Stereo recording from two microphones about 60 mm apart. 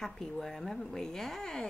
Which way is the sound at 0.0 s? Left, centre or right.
Centre.